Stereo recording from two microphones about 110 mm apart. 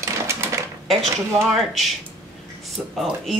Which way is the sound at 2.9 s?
Centre (ahead or behind).